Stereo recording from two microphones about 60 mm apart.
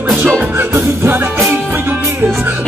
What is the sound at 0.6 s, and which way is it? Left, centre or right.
Music, right.